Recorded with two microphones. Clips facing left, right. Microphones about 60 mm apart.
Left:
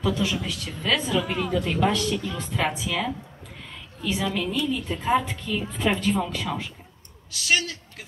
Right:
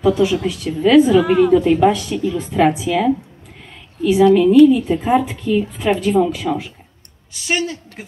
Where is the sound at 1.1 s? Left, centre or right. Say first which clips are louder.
Right 13 dB; right.